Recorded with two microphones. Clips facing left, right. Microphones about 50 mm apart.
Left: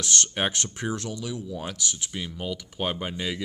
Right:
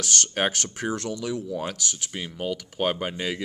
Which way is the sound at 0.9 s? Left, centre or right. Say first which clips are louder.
Right 3 dB; right.